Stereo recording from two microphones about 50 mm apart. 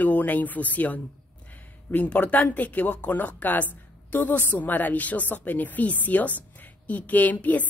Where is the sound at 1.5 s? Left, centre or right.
Left.